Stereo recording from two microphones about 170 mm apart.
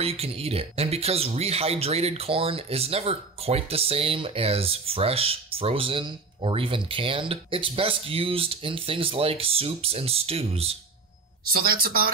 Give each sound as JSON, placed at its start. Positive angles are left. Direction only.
{"t": 0.0, "sound": "speech", "side_deg": -35}
{"t": 11.6, "sound": "speech", "side_deg": -60}